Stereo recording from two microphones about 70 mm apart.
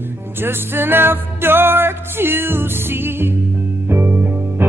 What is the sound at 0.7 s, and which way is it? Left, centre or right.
Music, right.